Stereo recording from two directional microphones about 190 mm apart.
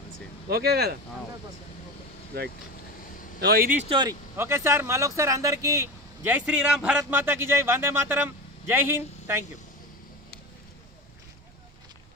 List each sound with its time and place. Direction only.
0.5 s speech: 55° right (ahead or behind)
3.3 s speech: 55° right (ahead or behind)
3.9 s speech: 25° right (ahead or behind)